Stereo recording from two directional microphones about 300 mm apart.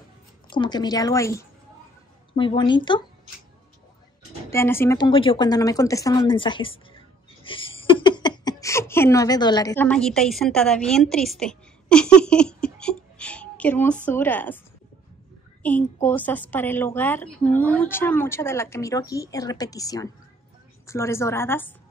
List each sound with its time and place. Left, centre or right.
0.5 s a woman's voice: centre
4.5 s a woman's voice: centre
7.4 s a sound: centre
14.0 s a woman's voice: centre
15.6 s a woman's voice: centre